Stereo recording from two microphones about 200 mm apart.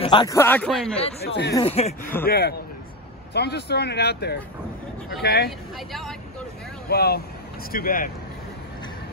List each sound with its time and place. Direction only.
0.0 s speech: 25° left (ahead or behind); by 0.9 s 5° left (ahead or behind)
1.2 s speech: 55° left (ahead or behind)
1.5 s speech: 30° left (ahead or behind)
2.2 s speech: 50° left (ahead or behind)
5.9 s speech: centre (ahead or behind)
6.9 s speech: 50° left (ahead or behind)